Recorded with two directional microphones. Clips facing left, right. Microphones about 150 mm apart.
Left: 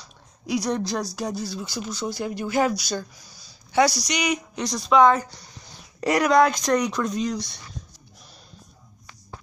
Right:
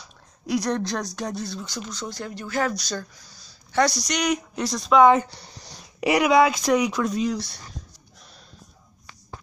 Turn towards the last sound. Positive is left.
turn(degrees=-5)  # may be behind; listen again after turning